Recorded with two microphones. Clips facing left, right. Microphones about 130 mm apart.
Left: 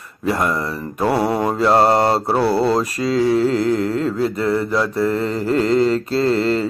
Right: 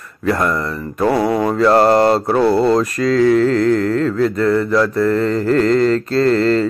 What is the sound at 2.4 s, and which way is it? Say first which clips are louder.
Speech: right 4 dB; 5° left (ahead or behind).